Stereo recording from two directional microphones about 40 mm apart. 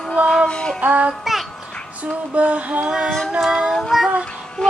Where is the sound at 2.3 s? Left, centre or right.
Right.